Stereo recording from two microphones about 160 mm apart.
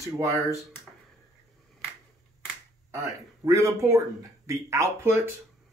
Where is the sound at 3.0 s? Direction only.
20° right (ahead or behind).